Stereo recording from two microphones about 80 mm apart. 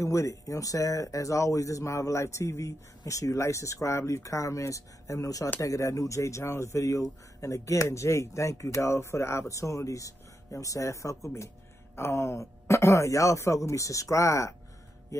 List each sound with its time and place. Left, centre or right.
0.0 s speech: left